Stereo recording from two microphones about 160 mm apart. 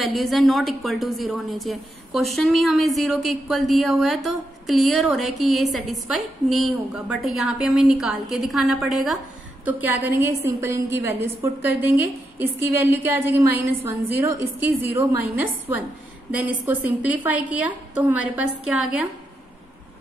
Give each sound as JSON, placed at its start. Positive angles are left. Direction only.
{"t": 0.0, "sound": "a woman's voice", "side_deg": 0}
{"t": 16.6, "sound": "a woman's voice", "side_deg": -10}